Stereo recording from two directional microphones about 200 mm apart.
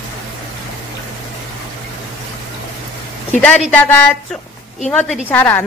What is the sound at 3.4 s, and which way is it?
A woman's voice, 5° left (ahead or behind).